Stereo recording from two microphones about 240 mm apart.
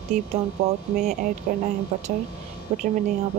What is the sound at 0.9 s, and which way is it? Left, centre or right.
Speech, right.